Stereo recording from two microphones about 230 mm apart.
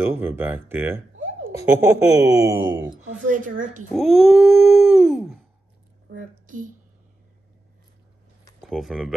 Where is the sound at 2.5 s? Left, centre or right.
Right.